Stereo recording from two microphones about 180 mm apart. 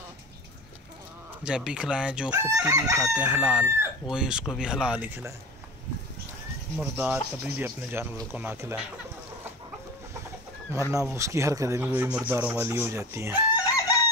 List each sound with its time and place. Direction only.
1.4 s chicken: 5° right (ahead or behind)
3.0 s chicken: 5° right (ahead or behind)
6.8 s speech: 10° right (ahead or behind)
11.1 s speech: 15° right (ahead or behind)
13.7 s chicken: 20° left (ahead or behind)